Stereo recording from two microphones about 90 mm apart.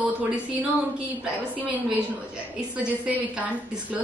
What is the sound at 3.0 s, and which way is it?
Speech, 15° right (ahead or behind).